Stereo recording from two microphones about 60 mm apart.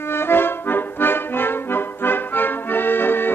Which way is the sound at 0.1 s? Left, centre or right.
Left.